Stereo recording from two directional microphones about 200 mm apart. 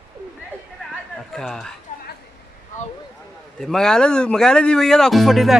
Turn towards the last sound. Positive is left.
turn(degrees=0)  # may be behind; listen again after turning